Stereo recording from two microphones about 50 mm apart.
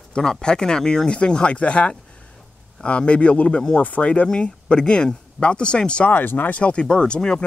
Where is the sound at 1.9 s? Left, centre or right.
Left.